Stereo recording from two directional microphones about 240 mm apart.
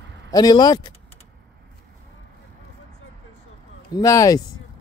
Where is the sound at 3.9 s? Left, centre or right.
Centre.